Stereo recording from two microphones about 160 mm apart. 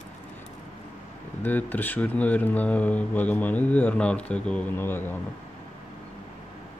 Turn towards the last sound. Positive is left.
turn(degrees=15)  # may be behind; listen again after turning